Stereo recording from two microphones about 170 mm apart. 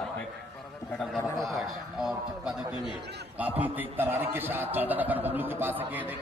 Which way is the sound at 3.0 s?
75° right (ahead or behind).